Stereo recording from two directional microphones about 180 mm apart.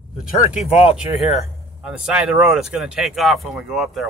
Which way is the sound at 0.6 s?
35° left (ahead or behind).